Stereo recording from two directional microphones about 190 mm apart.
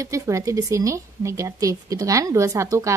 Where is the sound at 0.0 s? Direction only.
15° right (ahead or behind).